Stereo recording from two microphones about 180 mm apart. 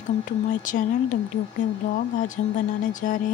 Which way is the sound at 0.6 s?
45° left (ahead or behind).